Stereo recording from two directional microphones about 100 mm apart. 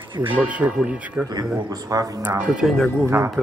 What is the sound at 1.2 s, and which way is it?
Speech, 40° right (ahead or behind).